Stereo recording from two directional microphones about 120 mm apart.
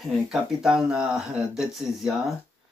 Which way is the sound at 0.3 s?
5° right (ahead or behind).